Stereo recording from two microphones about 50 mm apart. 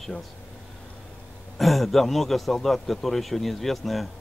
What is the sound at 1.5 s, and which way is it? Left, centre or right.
Speech, centre.